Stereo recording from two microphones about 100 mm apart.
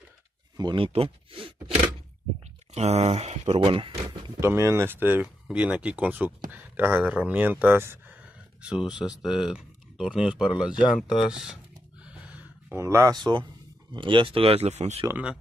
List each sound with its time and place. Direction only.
0.6 s speech: 55° right (ahead or behind)
2.7 s speech: 90° right
3.6 s speech: 60° right (ahead or behind)
4.4 s speech: 30° right (ahead or behind); by 11.6 s 5° right (ahead or behind)
12.7 s speech: 25° right (ahead or behind)
13.1 s speech: 50° right (ahead or behind); by 15.0 s 90° right